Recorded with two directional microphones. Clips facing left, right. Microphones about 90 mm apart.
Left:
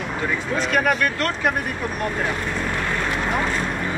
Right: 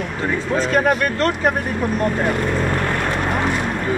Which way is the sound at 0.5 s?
35° right (ahead or behind).